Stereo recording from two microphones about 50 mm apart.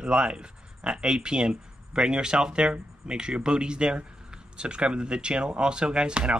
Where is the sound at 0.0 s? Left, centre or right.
Centre.